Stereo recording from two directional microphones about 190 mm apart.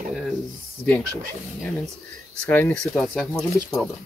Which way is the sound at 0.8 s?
10° left (ahead or behind).